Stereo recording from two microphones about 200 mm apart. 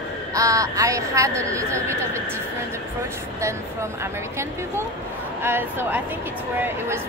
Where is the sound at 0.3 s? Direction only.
15° right (ahead or behind).